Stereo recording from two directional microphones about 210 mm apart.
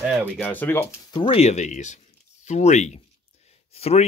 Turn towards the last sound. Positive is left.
turn(degrees=30)  # may be behind; listen again after turning